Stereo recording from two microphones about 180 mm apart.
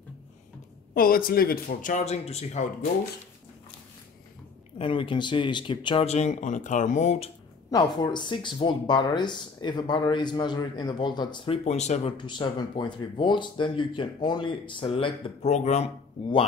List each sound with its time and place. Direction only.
0.9 s speech: 55° left (ahead or behind); by 2.9 s 40° left (ahead or behind)
4.7 s speech: 30° left (ahead or behind)
7.7 s speech: 25° left (ahead or behind)
12.3 s speech: 25° left (ahead or behind)